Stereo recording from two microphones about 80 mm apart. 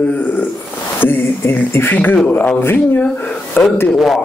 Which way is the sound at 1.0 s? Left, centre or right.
Left.